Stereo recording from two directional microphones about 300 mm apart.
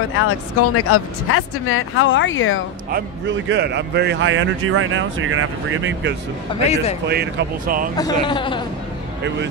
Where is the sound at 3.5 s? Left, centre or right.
Right.